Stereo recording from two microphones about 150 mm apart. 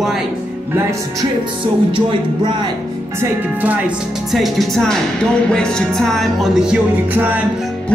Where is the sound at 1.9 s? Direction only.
30° right (ahead or behind).